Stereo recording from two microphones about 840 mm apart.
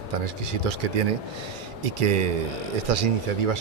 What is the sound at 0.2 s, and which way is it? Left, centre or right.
A man's voice, right.